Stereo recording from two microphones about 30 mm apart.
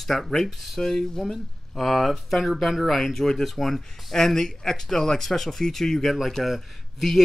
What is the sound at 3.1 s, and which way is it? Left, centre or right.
Speech, centre.